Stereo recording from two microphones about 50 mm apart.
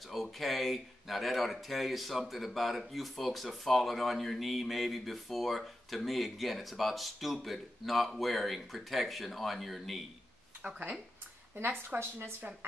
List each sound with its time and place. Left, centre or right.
0.1 s speech: centre
10.6 s speech: right
12.0 s a woman's voice: right